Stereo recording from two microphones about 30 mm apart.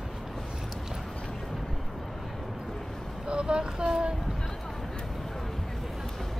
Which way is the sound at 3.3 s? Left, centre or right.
Right.